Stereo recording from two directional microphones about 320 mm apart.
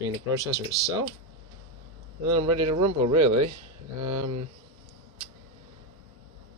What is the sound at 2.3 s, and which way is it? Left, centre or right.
Speech, centre.